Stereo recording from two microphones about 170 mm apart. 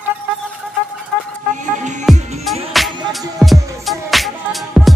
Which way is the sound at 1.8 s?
45° right (ahead or behind).